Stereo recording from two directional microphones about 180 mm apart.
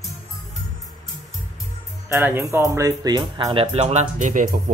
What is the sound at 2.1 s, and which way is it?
Speech, 10° right (ahead or behind).